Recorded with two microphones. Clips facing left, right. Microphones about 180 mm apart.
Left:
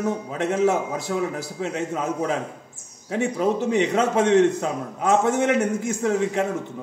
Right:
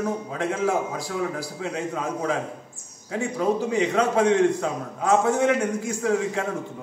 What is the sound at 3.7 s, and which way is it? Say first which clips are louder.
A man's voice: left 1 dB; 25° left (ahead or behind).